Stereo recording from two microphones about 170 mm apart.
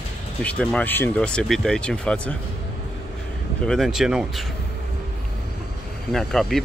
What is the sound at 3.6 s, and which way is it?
Speech, centre (ahead or behind).